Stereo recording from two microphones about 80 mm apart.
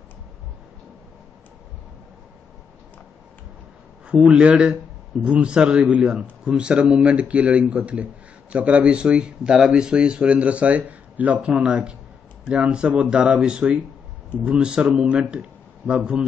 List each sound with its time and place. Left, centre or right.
4.1 s a man's voice: centre